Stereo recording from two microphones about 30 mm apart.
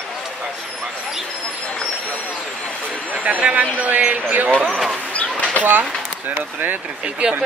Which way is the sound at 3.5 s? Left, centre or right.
Right.